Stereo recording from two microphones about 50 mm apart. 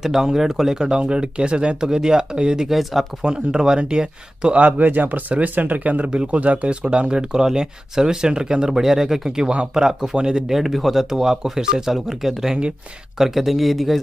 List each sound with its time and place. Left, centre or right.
0.0 s speech: centre
2.8 s speech: centre
3.3 s speech: centre
4.6 s speech: right; by 9.5 s centre
9.5 s speech: right
10.6 s speech: centre